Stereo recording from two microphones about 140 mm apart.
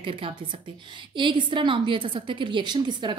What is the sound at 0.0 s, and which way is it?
A woman's voice, 40° right (ahead or behind).